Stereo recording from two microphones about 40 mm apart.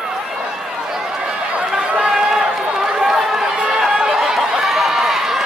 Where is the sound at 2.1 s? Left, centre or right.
Centre.